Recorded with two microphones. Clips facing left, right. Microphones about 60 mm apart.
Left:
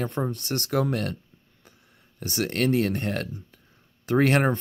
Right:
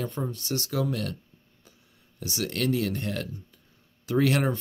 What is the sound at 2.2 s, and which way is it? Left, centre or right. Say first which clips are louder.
Speech: left 4 dB; left.